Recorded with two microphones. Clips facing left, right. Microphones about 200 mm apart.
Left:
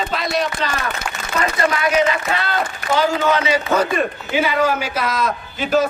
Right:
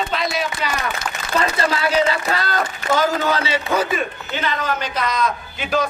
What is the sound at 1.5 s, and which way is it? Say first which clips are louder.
A man's voice: left 4 dB; 30° right (ahead or behind).